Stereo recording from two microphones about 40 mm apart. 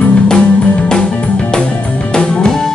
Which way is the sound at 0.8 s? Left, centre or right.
Centre.